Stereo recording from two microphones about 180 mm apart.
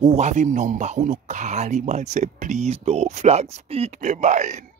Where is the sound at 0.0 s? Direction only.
40° right (ahead or behind).